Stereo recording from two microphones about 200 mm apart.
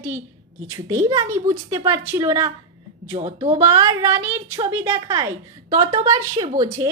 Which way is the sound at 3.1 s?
30° right (ahead or behind).